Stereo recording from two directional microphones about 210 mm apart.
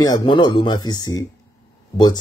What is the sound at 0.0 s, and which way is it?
Speech, 20° left (ahead or behind).